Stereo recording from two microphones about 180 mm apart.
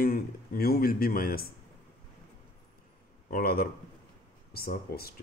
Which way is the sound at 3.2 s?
55° left (ahead or behind).